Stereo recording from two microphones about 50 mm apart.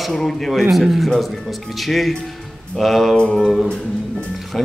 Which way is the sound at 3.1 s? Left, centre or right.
Centre.